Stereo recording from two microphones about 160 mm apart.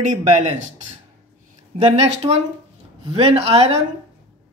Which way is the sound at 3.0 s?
35° right (ahead or behind).